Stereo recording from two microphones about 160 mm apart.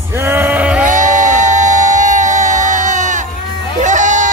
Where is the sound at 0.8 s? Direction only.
55° right (ahead or behind).